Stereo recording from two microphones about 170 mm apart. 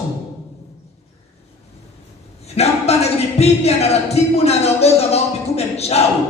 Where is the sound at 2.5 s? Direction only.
40° left (ahead or behind).